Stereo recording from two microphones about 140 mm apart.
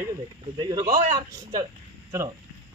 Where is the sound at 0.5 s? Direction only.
30° right (ahead or behind).